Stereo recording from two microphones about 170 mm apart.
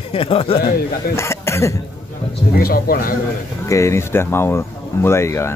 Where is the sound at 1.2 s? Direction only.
15° left (ahead or behind).